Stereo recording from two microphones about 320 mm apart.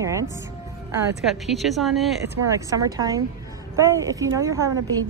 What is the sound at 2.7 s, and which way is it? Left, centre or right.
Speech, centre.